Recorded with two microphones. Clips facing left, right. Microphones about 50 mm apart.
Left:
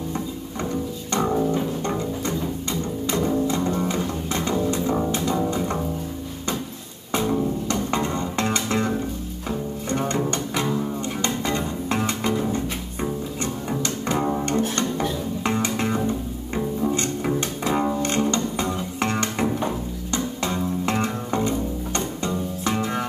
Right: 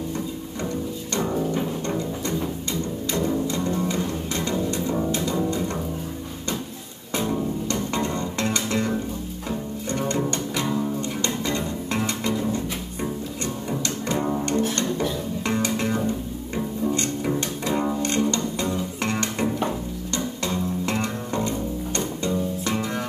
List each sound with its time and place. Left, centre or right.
1.9 s music: left
7.7 s music: left
13.7 s bowed string instrument: left
14.2 s music: centre
14.6 s music: left
16.5 s bowed string instrument: left
20.4 s music: left